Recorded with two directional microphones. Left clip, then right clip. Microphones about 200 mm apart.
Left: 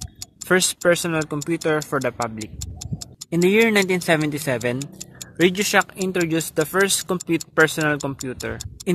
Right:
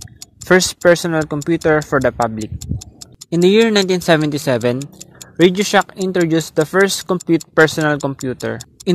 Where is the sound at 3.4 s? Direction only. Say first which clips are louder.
Right 5 dB; 25° right (ahead or behind).